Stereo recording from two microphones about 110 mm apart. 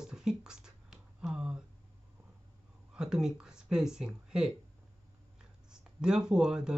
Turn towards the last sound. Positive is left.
turn(degrees=-5)  # may be behind; listen again after turning